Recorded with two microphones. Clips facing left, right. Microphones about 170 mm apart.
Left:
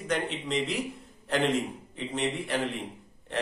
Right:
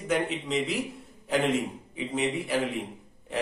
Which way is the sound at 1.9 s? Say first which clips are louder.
Right 2 dB; 5° right (ahead or behind).